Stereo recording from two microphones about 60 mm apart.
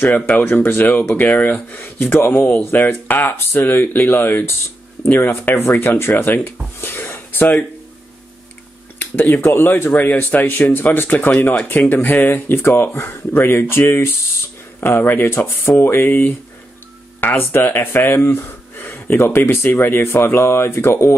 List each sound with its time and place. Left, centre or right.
0.0 s speech: left
8.9 s a sound: left
9.3 s speech: left
17.4 s speech: left